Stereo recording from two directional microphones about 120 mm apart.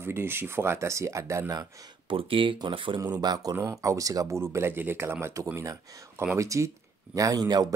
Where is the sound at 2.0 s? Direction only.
45° right (ahead or behind).